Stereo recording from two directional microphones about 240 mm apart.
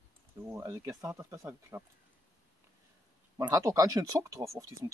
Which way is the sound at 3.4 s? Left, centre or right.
Centre.